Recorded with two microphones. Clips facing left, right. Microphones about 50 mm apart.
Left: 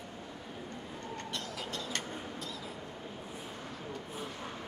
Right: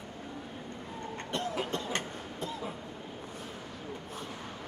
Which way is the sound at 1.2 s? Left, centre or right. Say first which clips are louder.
Right 9 dB; right.